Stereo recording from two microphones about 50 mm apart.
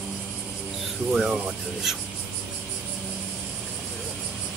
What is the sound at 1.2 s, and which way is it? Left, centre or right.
Speech, centre.